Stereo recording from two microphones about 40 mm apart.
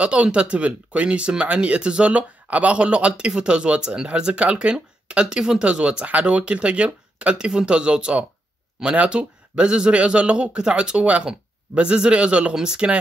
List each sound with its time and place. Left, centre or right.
0.0 s speech: right
4.1 s speech: right